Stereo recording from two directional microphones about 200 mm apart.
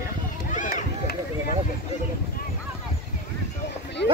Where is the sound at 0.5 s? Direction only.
40° left (ahead or behind).